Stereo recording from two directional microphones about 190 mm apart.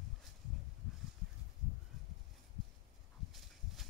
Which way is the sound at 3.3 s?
Centre (ahead or behind).